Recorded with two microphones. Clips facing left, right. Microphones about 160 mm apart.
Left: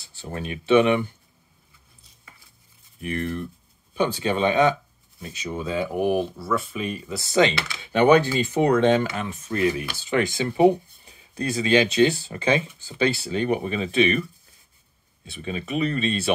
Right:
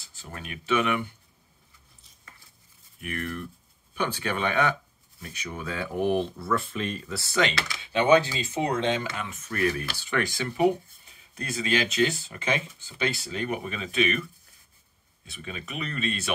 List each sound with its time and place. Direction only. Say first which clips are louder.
0.2 s speech: left 8 dB; 30° left (ahead or behind)
3.0 s speech: left 6 dB; 30° left (ahead or behind)
7.9 s speech: left 4 dB; 55° left (ahead or behind)
9.5 s speech: left 4 dB; 20° left (ahead or behind)
15.2 s speech: left 8 dB; 30° left (ahead or behind)